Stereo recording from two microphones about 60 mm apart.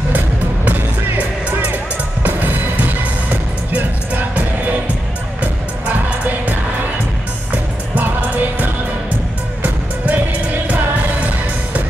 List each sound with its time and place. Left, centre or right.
0.7 s music: right